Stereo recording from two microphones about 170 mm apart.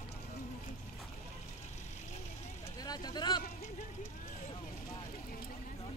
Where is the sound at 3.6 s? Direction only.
45° left (ahead or behind).